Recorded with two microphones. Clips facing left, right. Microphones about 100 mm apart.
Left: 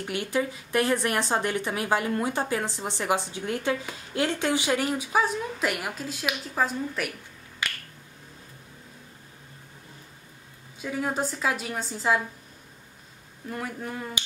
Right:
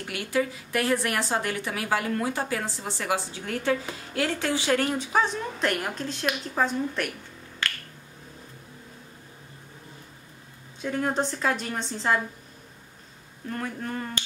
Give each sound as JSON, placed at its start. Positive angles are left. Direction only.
{"t": 0.0, "sound": "a woman's voice", "side_deg": 25}
{"t": 7.6, "sound": "finger snapping", "side_deg": 15}
{"t": 10.8, "sound": "a woman's voice", "side_deg": 5}
{"t": 13.5, "sound": "speech", "side_deg": 5}